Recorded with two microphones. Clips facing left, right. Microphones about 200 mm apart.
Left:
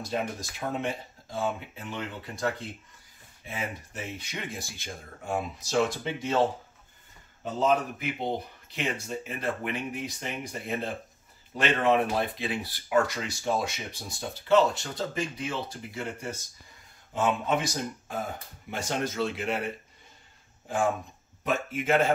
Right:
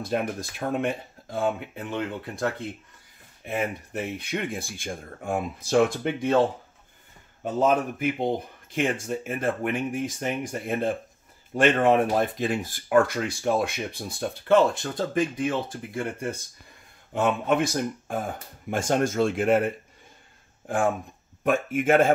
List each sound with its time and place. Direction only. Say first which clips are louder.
0.0 s speech: right 4 dB; 55° right (ahead or behind)
3.4 s speech: right 7 dB; 60° right (ahead or behind)
7.5 s speech: right 3 dB; 50° right (ahead or behind)
21.5 s speech: right 5 dB; 50° right (ahead or behind)